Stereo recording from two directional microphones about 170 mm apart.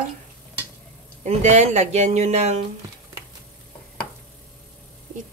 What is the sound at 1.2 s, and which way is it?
Speech, 40° right (ahead or behind).